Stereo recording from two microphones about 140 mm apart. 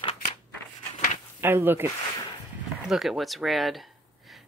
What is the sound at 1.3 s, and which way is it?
Speech, 15° right (ahead or behind).